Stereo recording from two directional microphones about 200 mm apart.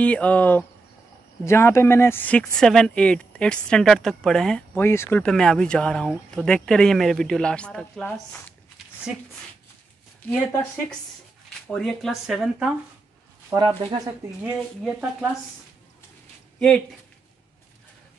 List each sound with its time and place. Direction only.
0.0 s speech: 5° left (ahead or behind)
11.6 s speech: 5° left (ahead or behind)
13.5 s speech: 20° right (ahead or behind)
14.4 s speech: 5° right (ahead or behind)
16.5 s speech: 5° left (ahead or behind)